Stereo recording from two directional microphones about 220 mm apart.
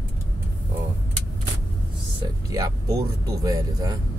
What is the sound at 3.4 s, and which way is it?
Speech, 15° right (ahead or behind).